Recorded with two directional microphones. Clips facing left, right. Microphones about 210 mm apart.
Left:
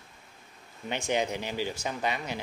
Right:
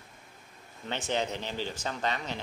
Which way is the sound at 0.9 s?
15° left (ahead or behind).